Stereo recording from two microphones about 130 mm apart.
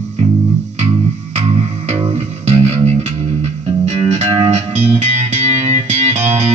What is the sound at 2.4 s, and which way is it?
Music, 55° right (ahead or behind).